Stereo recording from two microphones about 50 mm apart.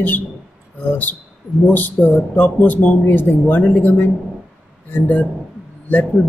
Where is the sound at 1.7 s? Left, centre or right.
Left.